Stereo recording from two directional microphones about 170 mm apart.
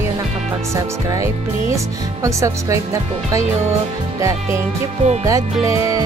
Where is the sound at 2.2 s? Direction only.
20° right (ahead or behind).